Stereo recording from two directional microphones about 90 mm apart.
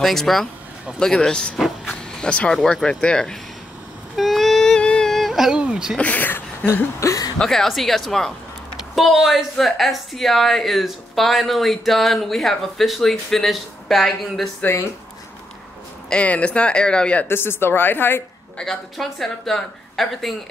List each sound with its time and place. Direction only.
0.0 s a woman's voice: 5° left (ahead or behind)
4.2 s a sound: centre (ahead or behind)
5.9 s speech: 15° left (ahead or behind)
6.7 s a sound: 35° left (ahead or behind)
7.3 s a woman's voice: 5° left (ahead or behind)
14.6 s a woman's voice: 25° left (ahead or behind)
16.1 s speech: 15° left (ahead or behind)
17.3 s a woman's voice: 25° left (ahead or behind)
18.6 s a woman's voice: 5° left (ahead or behind)